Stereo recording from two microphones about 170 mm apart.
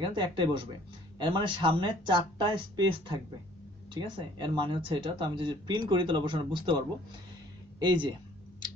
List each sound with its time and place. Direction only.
0.0 s speech: 30° right (ahead or behind)
7.8 s speech: 25° right (ahead or behind)